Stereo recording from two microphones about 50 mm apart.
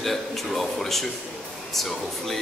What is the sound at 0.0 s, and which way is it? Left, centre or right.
Speech, centre.